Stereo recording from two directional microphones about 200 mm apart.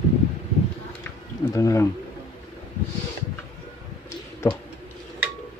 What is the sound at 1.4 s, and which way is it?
Speech, 15° left (ahead or behind).